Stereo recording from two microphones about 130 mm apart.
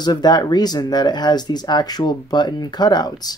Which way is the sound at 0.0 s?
35° left (ahead or behind).